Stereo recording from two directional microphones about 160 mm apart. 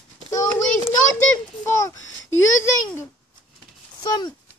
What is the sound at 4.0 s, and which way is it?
Speech, 25° left (ahead or behind).